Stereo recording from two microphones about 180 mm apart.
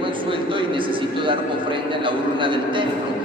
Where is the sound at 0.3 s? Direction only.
30° right (ahead or behind).